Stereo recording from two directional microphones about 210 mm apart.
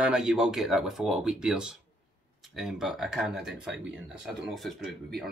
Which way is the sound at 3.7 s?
55° right (ahead or behind).